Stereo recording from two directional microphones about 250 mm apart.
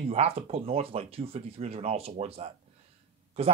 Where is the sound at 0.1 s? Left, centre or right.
Right.